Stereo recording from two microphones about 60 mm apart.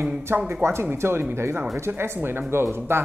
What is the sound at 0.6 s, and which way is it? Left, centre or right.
Speech, right.